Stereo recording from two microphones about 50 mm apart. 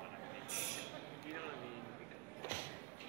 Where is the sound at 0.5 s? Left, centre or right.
Centre.